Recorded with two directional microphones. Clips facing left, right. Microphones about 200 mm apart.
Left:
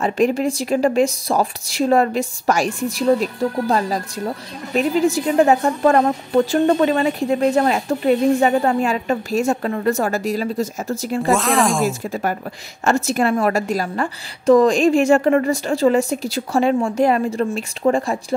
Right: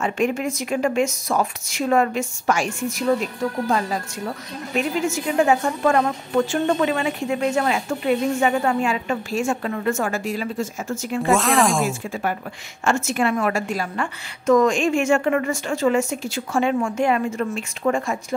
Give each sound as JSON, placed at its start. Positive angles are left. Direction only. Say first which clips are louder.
{"t": 0.0, "sound": "speech", "louder": "left 4 dB", "side_deg": 35}
{"t": 11.3, "sound": "speech", "louder": "even", "side_deg": 0}
{"t": 12.0, "sound": "speech", "louder": "left 3 dB", "side_deg": 40}